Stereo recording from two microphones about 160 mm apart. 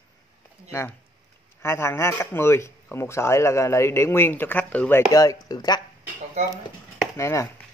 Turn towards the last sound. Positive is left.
turn(degrees=20)  # may be behind; listen again after turning